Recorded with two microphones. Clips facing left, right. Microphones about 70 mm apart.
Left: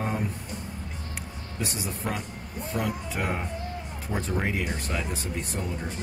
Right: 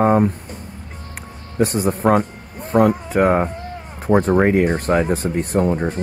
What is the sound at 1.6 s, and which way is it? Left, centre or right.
Speech, right.